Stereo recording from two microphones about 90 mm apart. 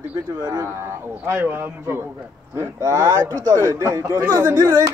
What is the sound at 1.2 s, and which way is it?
Speech, 25° right (ahead or behind).